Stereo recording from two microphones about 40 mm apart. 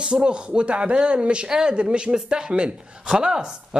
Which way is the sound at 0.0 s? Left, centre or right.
Right.